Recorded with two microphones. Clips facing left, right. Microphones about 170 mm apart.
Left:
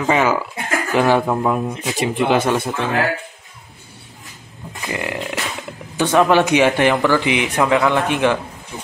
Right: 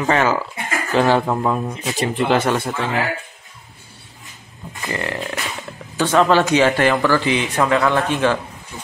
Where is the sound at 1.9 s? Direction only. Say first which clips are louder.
Left 1 dB; 15° left (ahead or behind).